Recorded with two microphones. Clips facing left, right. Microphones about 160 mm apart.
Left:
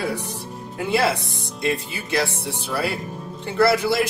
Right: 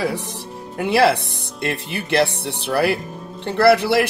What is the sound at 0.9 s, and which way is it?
Speech, 70° right (ahead or behind).